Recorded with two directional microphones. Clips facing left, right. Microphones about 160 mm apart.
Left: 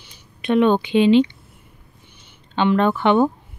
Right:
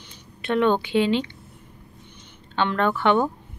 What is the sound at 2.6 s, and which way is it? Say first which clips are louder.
Speech: left 5 dB; 15° left (ahead or behind).